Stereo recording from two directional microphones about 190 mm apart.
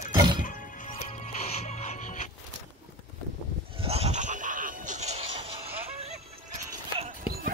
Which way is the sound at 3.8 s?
30° right (ahead or behind).